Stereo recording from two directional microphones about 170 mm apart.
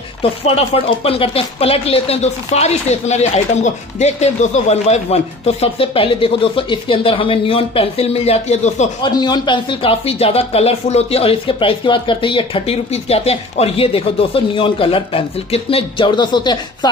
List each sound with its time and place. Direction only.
0.2 s speech: 35° left (ahead or behind)
9.0 s speech: 25° left (ahead or behind)